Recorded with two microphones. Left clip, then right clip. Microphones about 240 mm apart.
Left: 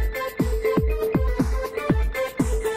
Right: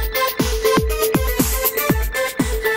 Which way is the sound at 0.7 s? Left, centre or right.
Right.